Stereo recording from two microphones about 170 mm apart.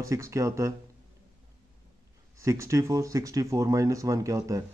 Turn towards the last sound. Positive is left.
turn(degrees=-20)  # may be behind; listen again after turning